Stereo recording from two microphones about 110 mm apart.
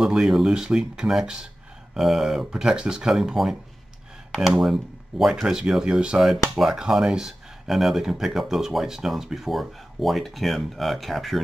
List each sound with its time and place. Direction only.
0.0 s speech: centre (ahead or behind)